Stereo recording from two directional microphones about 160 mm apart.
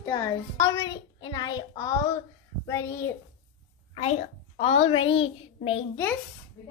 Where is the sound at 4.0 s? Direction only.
45° left (ahead or behind).